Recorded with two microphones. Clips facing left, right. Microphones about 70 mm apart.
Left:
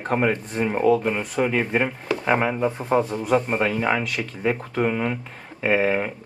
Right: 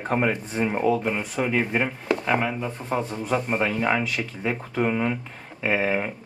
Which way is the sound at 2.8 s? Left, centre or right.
Centre.